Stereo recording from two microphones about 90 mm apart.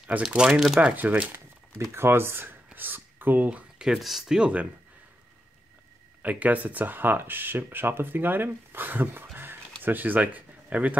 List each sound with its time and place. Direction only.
0.3 s speech: 10° right (ahead or behind)
0.7 s speech: 15° right (ahead or behind)
1.9 s speech: 25° right (ahead or behind); by 4.6 s 10° right (ahead or behind)
6.2 s speech: 15° right (ahead or behind)